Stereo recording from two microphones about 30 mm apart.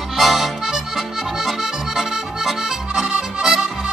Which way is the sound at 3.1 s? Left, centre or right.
Centre.